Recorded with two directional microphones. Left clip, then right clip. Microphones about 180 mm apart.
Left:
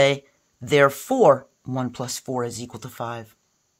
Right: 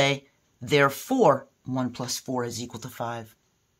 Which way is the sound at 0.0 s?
30° left (ahead or behind).